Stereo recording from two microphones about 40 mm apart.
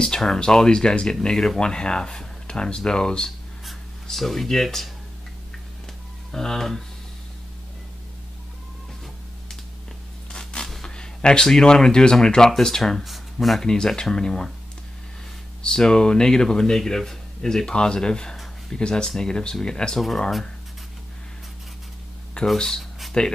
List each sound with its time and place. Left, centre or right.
0.0 s speech: centre
3.3 s writing: centre
6.3 s speech: centre
10.8 s speech: centre
13.0 s a sound: centre
13.6 s speech: centre
15.6 s speech: centre
22.6 s speech: centre
23.2 s speech: centre